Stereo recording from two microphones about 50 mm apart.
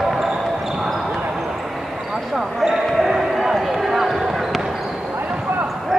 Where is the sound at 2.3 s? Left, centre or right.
Centre.